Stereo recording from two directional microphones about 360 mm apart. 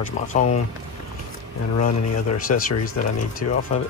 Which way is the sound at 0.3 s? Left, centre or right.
Left.